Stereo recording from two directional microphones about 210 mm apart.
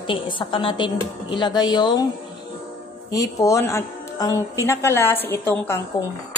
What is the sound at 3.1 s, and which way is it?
A woman's voice, 15° left (ahead or behind).